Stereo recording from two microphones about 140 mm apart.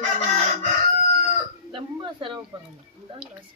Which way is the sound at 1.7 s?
35° right (ahead or behind).